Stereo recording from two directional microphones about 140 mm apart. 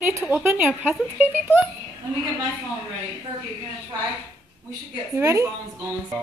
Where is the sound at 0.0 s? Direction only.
15° right (ahead or behind).